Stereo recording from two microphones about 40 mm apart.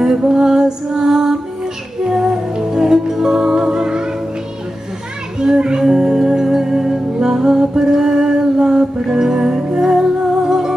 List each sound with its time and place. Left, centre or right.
0.0 s music: centre
5.4 s music: centre